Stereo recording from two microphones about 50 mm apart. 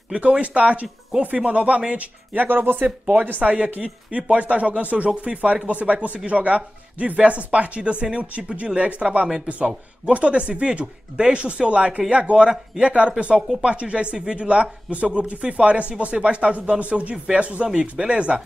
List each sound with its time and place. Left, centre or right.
0.1 s speech: right
2.3 s speech: right
3.1 s speech: right